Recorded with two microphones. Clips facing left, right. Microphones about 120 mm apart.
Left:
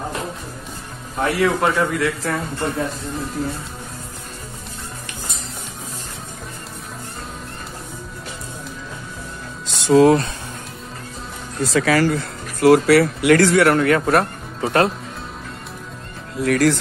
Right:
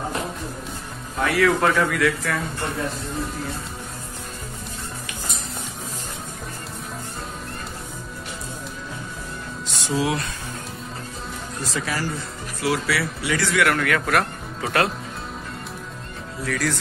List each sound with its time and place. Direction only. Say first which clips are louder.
1.2 s a man's voice: left 1 dB; 25° left (ahead or behind)
9.9 s speech: left 12 dB; 50° left (ahead or behind)
11.6 s speech: left 11 dB; 90° left
12.5 s speech: left 12 dB; 55° left (ahead or behind)
13.6 s speech: left 6 dB; 35° left (ahead or behind)
16.4 s speech: left 9 dB; 60° left (ahead or behind)